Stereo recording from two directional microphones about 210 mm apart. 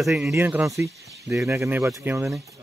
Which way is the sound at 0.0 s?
Centre (ahead or behind).